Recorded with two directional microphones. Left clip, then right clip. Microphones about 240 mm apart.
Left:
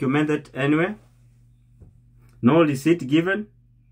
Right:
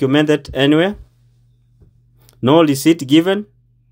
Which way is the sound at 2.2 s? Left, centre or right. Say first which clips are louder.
Right 6 dB; right.